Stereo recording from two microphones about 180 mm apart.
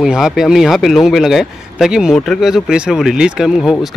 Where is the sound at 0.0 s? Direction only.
5° right (ahead or behind).